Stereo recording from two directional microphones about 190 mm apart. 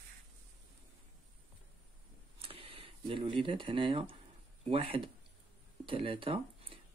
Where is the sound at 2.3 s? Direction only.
30° right (ahead or behind).